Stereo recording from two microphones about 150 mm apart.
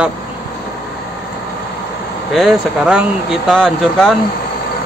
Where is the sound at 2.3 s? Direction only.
Centre (ahead or behind).